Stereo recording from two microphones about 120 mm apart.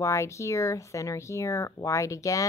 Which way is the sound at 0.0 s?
25° left (ahead or behind).